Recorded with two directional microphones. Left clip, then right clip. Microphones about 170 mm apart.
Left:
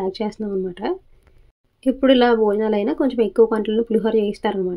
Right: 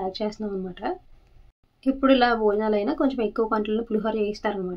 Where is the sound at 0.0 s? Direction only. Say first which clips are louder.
Left 4 dB; 25° left (ahead or behind).